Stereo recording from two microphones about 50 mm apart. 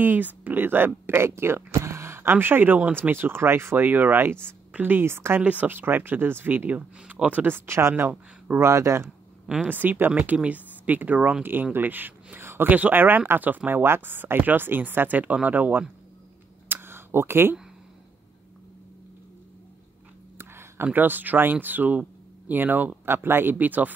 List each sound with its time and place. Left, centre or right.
0.0 s speech: right
3.7 s speech: right
5.0 s speech: right
5.4 s speech: right
5.7 s speech: right
7.6 s speech: right
9.7 s speech: right
12.4 s a sound: right
12.6 s speech: right
13.7 s speech: right
16.6 s a sound: right
20.3 s a sound: right
20.9 s speech: right